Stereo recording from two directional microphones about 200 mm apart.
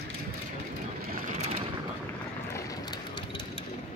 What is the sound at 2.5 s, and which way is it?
Vehicle, 20° left (ahead or behind).